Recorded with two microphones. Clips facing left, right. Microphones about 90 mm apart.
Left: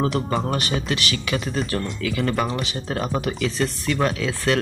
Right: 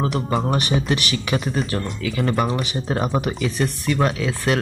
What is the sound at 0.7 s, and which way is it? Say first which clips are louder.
A man's voice: right 3 dB; 20° right (ahead or behind).